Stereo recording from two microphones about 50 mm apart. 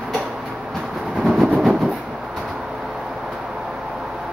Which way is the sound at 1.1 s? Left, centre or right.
Centre.